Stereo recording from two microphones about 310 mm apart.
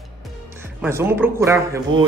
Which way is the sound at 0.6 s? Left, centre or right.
Centre.